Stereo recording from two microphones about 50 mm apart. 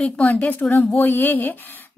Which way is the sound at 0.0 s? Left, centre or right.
Left.